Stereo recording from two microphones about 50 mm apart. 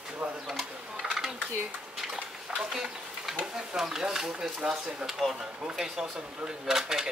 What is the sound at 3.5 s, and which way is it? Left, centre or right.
Speech, centre.